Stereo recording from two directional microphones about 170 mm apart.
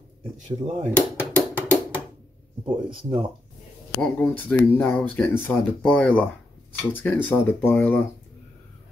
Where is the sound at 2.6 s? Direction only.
30° right (ahead or behind).